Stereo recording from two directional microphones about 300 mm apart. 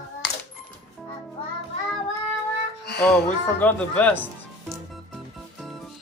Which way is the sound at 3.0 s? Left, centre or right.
Centre.